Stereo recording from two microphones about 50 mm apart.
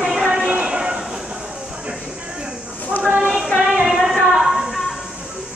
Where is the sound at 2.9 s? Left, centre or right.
Left.